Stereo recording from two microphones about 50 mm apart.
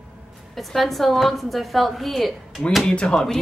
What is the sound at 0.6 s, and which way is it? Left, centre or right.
A woman's voice, centre.